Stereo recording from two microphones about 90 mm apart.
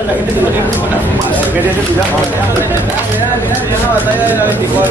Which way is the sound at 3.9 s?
20° right (ahead or behind).